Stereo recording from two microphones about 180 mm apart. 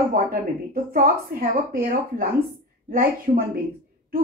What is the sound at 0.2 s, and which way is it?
A woman's voice, 50° right (ahead or behind).